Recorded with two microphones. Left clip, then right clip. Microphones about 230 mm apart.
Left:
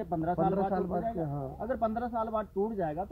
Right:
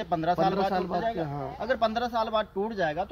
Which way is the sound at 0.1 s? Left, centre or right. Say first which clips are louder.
Right 5 dB; centre.